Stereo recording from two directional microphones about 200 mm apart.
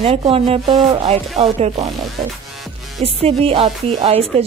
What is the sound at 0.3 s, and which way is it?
Speech, 30° right (ahead or behind).